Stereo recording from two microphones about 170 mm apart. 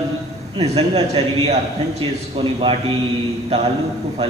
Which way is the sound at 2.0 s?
35° right (ahead or behind).